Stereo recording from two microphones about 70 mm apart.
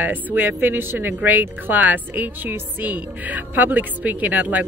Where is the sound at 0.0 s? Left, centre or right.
Right.